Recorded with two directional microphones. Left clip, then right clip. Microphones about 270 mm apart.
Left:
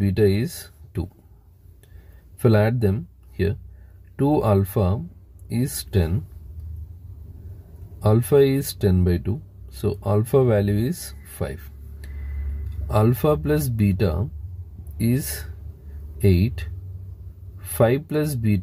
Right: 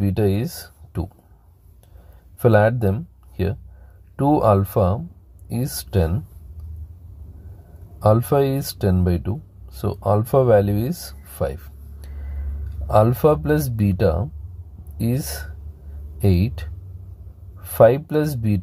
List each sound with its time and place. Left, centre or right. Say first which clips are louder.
0.0 s speech: left 1 dB; centre
2.4 s speech: right 4 dB; centre
4.2 s speech: right 4 dB; centre
8.0 s speech: even; centre
17.6 s speech: right 6 dB; centre